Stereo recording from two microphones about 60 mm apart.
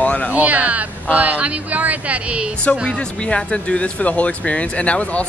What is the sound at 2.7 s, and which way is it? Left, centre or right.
Speech, left.